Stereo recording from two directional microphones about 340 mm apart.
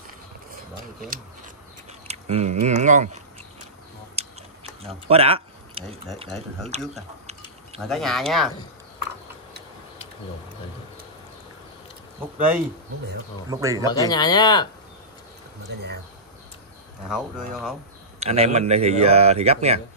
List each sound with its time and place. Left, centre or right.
0.5 s a sound: right
2.0 s speech: centre
4.1 s a sound: centre
5.1 s speech: centre
6.2 s speech: centre
12.4 s speech: centre
13.8 s speech: centre
18.2 s speech: centre